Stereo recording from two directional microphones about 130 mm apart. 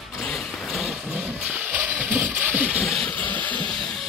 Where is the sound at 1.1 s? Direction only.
10° right (ahead or behind).